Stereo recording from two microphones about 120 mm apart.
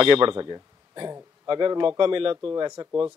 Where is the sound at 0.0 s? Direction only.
45° right (ahead or behind).